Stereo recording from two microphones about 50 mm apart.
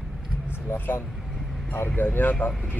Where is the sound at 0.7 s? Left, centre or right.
Left.